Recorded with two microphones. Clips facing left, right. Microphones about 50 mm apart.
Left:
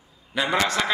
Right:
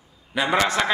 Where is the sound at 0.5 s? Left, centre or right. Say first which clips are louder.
Right 2 dB; centre.